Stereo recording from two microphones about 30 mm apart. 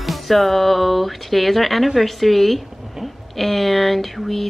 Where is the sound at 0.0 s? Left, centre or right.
Centre.